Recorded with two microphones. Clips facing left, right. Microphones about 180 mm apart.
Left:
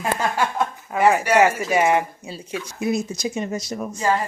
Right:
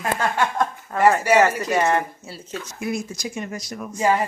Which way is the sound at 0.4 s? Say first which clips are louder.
Even; 5° left (ahead or behind).